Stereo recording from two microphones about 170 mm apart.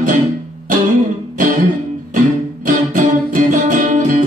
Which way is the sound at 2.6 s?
55° right (ahead or behind).